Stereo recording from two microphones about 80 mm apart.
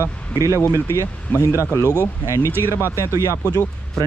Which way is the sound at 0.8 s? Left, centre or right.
Left.